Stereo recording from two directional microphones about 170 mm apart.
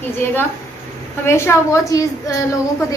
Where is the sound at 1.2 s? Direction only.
15° left (ahead or behind).